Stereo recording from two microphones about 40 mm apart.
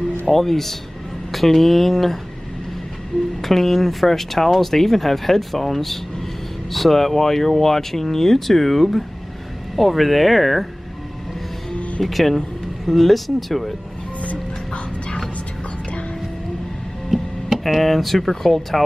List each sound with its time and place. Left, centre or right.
0.3 s speech: centre
3.4 s speech: centre
12.0 s speech: centre
14.2 s music: left
17.7 s speech: centre